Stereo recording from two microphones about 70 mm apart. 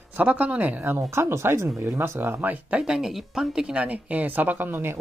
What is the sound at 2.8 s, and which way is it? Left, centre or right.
Speech, centre.